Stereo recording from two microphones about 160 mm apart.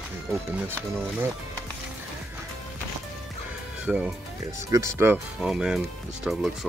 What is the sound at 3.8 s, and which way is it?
Speech, 10° right (ahead or behind).